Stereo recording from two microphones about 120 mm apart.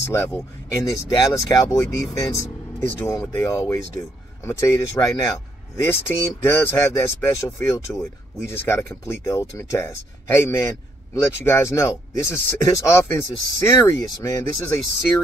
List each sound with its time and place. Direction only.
0.0 s speech: 20° left (ahead or behind)